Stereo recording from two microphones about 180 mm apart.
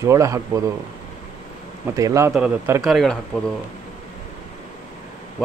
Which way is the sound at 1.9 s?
20° right (ahead or behind).